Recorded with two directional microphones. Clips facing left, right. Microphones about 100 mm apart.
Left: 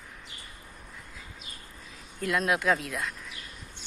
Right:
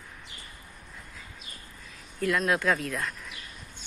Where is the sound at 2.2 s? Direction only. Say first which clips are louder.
Right 1 dB; 20° left (ahead or behind).